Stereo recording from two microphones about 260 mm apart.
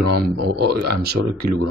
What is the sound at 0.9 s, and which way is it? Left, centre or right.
Speech, right.